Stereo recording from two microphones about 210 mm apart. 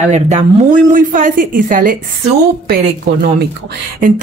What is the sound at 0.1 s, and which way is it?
A woman's voice, 35° right (ahead or behind).